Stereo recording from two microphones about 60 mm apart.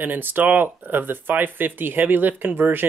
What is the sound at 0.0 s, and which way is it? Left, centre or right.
Speech, right.